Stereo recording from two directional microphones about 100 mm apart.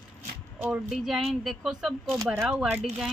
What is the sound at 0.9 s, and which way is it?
Speech, centre (ahead or behind).